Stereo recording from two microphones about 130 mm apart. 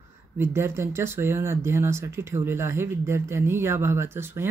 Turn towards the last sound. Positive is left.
turn(degrees=-20)  # may be behind; listen again after turning